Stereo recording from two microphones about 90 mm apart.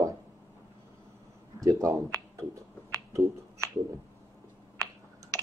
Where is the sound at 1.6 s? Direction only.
35° right (ahead or behind).